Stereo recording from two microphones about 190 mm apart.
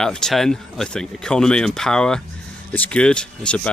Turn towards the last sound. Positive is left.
turn(degrees=5)  # may be behind; listen again after turning